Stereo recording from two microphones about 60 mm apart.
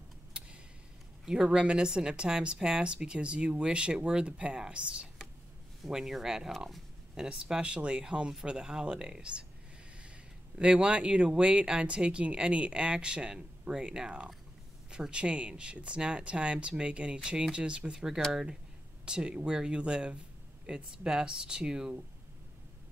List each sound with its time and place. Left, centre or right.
1.2 s speech: centre
10.6 s speech: centre